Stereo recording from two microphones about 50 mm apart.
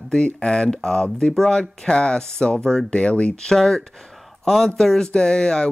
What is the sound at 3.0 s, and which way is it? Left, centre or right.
Speech, left.